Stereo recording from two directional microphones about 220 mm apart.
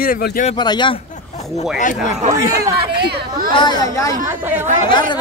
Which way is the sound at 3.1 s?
40° right (ahead or behind).